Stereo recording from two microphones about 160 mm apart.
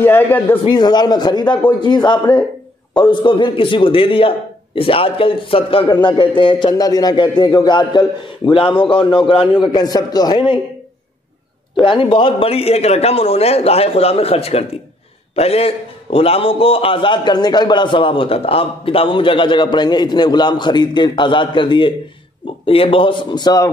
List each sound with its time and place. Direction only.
0.0 s speech: 15° left (ahead or behind)
0.7 s a man's voice: 25° left (ahead or behind)
11.7 s a man's voice: 30° left (ahead or behind)